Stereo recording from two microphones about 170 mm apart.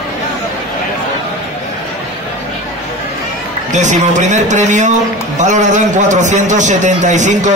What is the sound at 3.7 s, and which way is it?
A man's voice, 45° right (ahead or behind).